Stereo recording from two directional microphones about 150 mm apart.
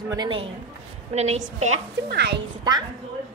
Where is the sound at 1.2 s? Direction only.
45° right (ahead or behind).